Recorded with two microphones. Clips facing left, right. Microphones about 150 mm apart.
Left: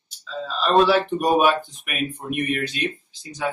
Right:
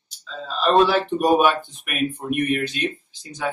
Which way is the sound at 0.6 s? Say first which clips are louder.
Even; centre (ahead or behind).